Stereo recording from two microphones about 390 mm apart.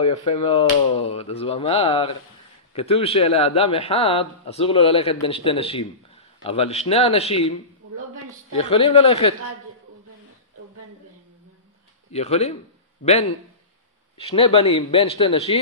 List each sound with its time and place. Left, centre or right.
0.0 s a man's voice: centre
8.5 s a man's voice: centre
12.1 s a man's voice: centre